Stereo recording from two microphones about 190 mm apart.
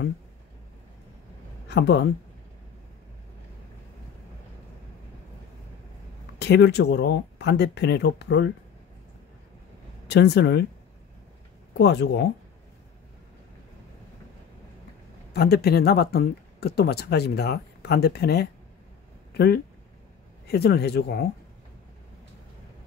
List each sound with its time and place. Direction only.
1.7 s speech: 65° left (ahead or behind)
6.4 s speech: 60° left (ahead or behind)
10.0 s speech: 65° left (ahead or behind)
11.8 s speech: 65° left (ahead or behind)
15.3 s speech: 55° left (ahead or behind)